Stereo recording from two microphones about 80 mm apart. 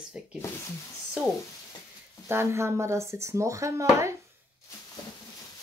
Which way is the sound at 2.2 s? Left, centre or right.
Right.